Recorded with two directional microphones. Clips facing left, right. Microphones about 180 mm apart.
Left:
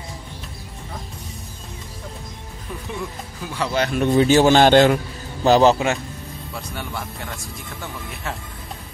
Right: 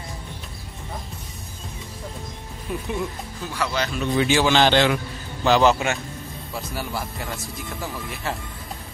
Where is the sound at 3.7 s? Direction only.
55° left (ahead or behind).